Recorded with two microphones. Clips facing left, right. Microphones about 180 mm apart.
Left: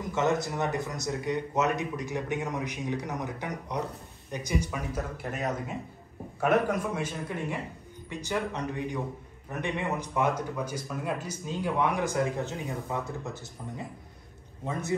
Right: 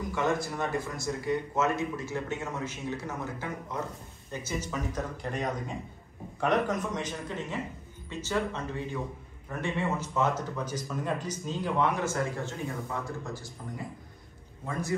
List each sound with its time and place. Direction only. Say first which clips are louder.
0.1 s speech: left 3 dB; 20° left (ahead or behind)
14.6 s a man's voice: left 1 dB; 20° left (ahead or behind)